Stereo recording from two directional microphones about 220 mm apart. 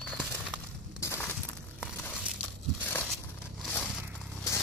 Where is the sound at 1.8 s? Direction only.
Centre (ahead or behind).